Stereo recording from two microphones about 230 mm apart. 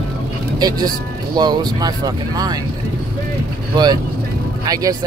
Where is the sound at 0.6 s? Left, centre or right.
Centre.